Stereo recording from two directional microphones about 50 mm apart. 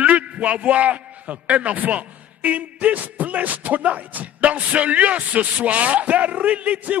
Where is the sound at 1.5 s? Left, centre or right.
Right.